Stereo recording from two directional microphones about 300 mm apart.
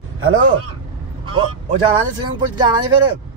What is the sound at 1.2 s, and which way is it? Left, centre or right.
Speech, centre.